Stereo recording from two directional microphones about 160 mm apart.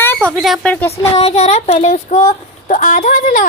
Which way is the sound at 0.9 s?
40° left (ahead or behind).